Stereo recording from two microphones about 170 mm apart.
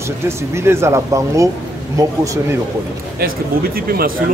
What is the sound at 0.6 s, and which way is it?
Speech, 15° right (ahead or behind).